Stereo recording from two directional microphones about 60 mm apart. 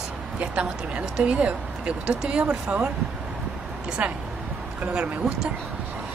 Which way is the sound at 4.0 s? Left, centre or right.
Centre.